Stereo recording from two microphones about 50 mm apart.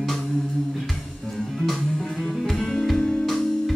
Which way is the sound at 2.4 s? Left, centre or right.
Centre.